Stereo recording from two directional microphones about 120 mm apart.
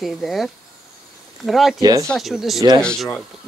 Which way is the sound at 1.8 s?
30° right (ahead or behind).